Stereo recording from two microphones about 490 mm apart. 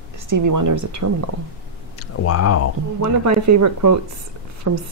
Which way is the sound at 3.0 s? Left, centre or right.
Right.